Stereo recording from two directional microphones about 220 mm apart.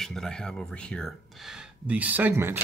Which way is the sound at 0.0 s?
Centre (ahead or behind).